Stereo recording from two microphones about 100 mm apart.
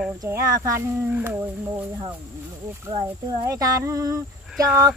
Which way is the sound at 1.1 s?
20° right (ahead or behind).